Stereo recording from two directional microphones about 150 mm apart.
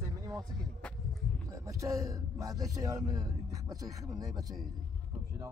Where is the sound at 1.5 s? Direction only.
20° right (ahead or behind).